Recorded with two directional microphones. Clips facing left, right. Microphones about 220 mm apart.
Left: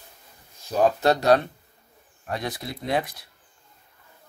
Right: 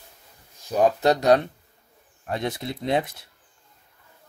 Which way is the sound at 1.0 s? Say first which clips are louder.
Right 1 dB; 15° right (ahead or behind).